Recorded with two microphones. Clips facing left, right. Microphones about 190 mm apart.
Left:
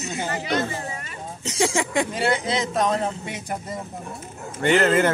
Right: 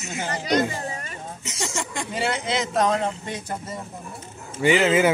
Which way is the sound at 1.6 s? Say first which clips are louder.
Left 9 dB; 60° left (ahead or behind).